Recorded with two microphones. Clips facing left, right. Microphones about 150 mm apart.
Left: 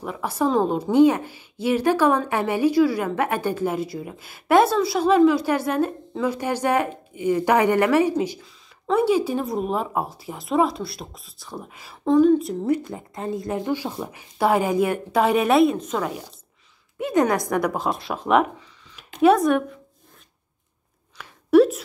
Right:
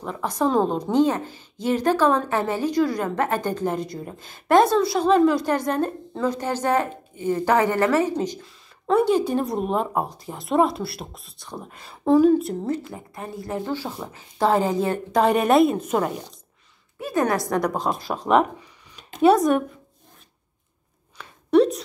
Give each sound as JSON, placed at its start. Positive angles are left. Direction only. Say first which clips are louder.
{"t": 0.0, "sound": "a woman's voice", "louder": "even", "side_deg": 10}
{"t": 12.6, "sound": "a woman's voice", "louder": "left 4 dB", "side_deg": 15}
{"t": 17.0, "sound": "a woman's voice", "louder": "left 2 dB", "side_deg": 20}
{"t": 21.2, "sound": "a sound", "louder": "left 2 dB", "side_deg": 5}